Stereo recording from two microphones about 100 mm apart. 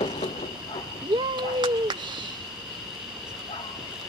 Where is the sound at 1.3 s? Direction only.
45° right (ahead or behind).